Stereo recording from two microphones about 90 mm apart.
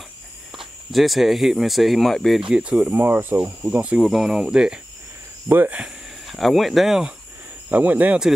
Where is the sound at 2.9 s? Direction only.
25° right (ahead or behind).